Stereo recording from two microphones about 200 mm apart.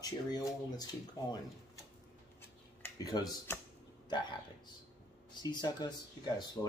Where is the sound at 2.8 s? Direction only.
20° left (ahead or behind).